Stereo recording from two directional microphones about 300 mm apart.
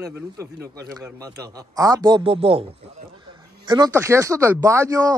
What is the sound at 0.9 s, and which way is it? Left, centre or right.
Speech, centre.